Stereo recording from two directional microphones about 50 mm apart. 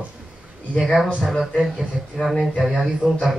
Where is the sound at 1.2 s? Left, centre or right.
Centre.